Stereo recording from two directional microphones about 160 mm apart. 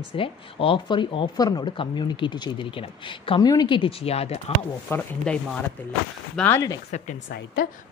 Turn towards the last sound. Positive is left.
turn(degrees=60)  # may be behind; listen again after turning